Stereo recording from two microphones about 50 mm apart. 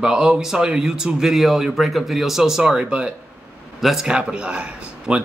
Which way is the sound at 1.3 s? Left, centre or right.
Centre.